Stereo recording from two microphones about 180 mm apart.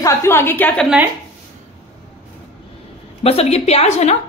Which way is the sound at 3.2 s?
35° left (ahead or behind).